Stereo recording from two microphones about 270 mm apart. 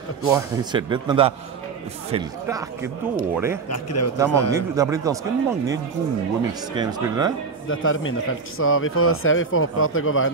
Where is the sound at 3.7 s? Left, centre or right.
Left.